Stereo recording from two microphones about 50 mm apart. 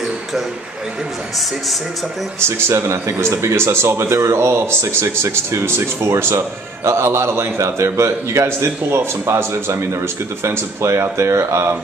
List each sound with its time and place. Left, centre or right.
2.4 s speech: right